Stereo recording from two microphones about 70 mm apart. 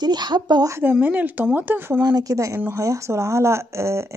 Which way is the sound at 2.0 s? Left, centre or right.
Right.